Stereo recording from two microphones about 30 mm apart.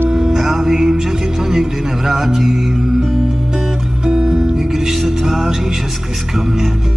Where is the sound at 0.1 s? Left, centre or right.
Centre.